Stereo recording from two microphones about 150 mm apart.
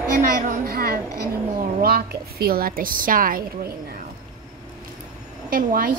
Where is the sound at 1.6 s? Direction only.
85° right; by 3.4 s 70° right (ahead or behind).